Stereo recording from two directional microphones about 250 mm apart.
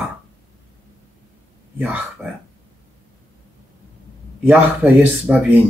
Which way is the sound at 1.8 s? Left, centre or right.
Centre.